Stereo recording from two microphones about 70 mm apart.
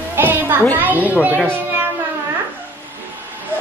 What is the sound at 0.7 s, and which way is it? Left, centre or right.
A child's voice, right.